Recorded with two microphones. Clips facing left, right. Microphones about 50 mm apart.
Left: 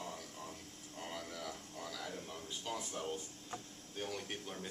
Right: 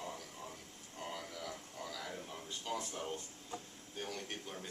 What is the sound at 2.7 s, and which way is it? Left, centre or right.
Speech, centre.